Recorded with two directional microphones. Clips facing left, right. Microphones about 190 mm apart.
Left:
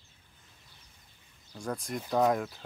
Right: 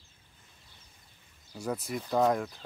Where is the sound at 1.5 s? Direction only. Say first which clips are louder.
Right 2 dB; 5° right (ahead or behind).